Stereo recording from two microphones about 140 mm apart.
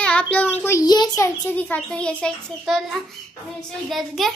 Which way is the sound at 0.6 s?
20° left (ahead or behind).